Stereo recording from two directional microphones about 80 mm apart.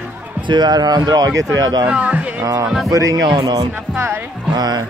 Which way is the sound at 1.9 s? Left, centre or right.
Centre.